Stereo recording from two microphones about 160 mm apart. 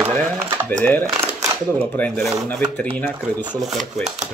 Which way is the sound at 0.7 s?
10° left (ahead or behind).